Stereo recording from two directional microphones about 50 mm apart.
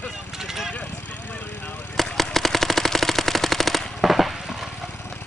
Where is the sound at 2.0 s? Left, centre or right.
Centre.